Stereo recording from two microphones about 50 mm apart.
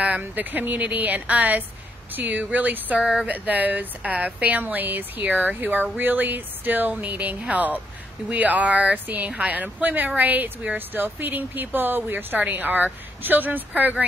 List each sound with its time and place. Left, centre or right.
0.2 s speech: right
3.0 s speech: centre
3.3 s speech: right